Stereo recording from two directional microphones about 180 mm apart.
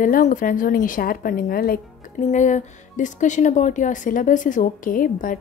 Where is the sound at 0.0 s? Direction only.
45° left (ahead or behind).